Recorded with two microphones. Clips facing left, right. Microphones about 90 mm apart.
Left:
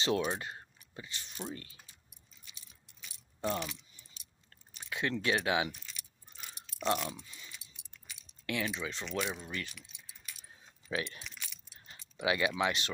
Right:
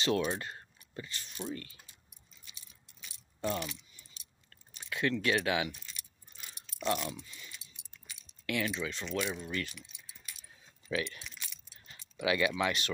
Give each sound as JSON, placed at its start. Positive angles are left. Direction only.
{"t": 0.2, "sound": "speech", "side_deg": 10}
{"t": 3.3, "sound": "speech", "side_deg": 25}
{"t": 4.5, "sound": "chewing", "side_deg": 20}
{"t": 5.1, "sound": "speech", "side_deg": 20}
{"t": 6.5, "sound": "keys jangling", "side_deg": 25}
{"t": 8.5, "sound": "speech", "side_deg": 20}
{"t": 10.9, "sound": "speech", "side_deg": 25}
{"t": 12.2, "sound": "speech", "side_deg": 20}